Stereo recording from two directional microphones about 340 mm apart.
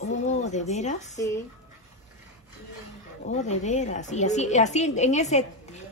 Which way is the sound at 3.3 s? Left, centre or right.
Centre.